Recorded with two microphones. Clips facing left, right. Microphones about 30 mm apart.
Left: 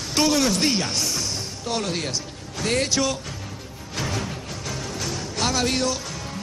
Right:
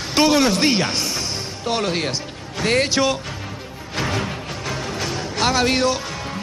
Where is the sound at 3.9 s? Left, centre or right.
Right.